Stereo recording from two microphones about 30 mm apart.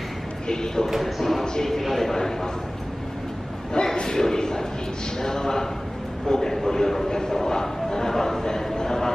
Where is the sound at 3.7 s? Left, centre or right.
Left.